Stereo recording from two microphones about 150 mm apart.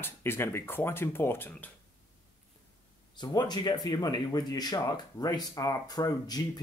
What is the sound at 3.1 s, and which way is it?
Speech, 30° left (ahead or behind).